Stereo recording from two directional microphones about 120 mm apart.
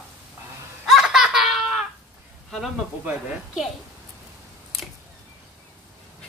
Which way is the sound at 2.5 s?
Centre (ahead or behind).